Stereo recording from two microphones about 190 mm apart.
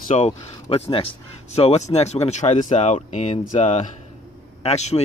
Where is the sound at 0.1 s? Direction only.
35° left (ahead or behind).